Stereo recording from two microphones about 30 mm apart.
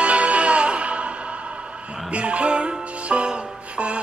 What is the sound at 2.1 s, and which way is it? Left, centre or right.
Music, right.